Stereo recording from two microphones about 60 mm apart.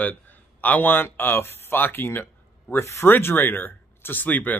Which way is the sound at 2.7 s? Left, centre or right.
Left.